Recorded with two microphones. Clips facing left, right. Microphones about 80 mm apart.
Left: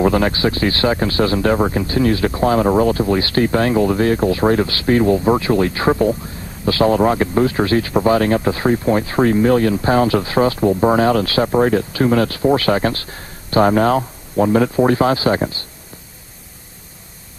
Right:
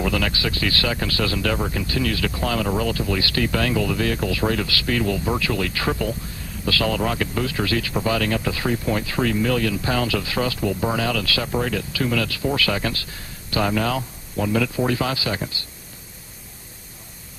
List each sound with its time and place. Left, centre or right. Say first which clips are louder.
0.0 s speech: left 8 dB; left